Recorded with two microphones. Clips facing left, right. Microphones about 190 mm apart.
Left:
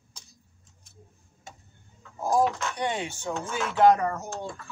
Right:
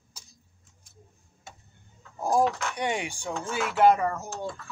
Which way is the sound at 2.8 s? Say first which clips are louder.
Even; 10° right (ahead or behind).